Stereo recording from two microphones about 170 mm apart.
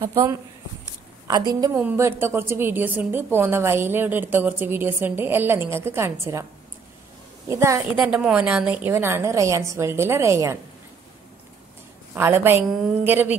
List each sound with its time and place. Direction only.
0.0 s a woman's voice: 20° right (ahead or behind)
1.8 s a woman's voice: 10° right (ahead or behind)
7.4 s a woman's voice: 20° right (ahead or behind)
8.0 s a woman's voice: 5° right (ahead or behind)
12.1 s a woman's voice: 15° right (ahead or behind)